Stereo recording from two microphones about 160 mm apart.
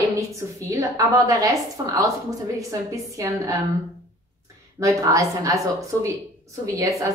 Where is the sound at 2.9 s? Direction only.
20° right (ahead or behind).